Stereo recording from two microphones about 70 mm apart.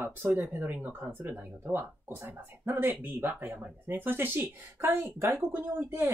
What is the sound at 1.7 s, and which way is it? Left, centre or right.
Speech, right.